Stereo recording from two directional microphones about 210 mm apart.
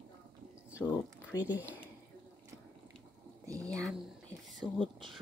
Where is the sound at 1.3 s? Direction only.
10° right (ahead or behind).